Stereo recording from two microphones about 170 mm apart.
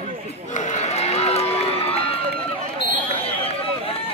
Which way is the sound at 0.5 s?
45° left (ahead or behind).